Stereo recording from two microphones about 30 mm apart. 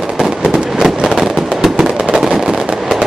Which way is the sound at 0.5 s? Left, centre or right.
Centre.